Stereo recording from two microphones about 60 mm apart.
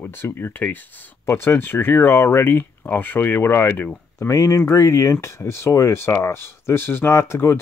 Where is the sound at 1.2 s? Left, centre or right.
Left.